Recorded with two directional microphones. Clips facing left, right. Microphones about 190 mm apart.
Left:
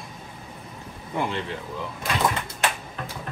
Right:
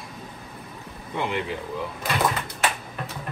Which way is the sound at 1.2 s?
15° right (ahead or behind).